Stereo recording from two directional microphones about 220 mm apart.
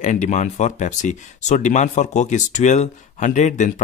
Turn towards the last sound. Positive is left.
turn(degrees=35)  # may be behind; listen again after turning